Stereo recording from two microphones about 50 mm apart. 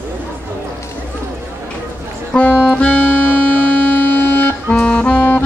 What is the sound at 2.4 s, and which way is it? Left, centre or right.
Music, left.